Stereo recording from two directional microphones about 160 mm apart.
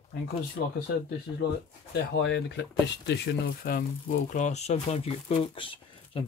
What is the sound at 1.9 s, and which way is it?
Speech, 90° left.